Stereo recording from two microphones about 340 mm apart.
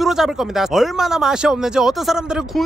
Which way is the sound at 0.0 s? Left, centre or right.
Centre.